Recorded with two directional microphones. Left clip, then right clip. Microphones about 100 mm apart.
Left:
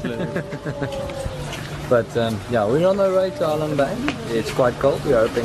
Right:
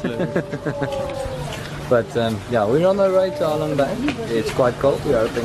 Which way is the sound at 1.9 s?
10° right (ahead or behind).